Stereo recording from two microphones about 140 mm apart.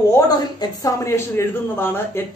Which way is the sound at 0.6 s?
20° left (ahead or behind).